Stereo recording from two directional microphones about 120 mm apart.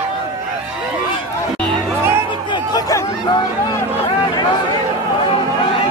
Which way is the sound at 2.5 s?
30° left (ahead or behind).